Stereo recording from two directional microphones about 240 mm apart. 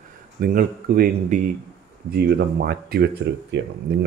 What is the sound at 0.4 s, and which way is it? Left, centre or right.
Speech, right.